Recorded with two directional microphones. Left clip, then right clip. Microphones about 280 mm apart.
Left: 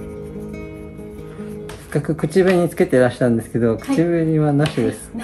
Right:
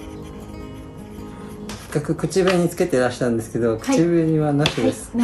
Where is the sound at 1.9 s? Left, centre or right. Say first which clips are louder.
Left 3 dB; centre.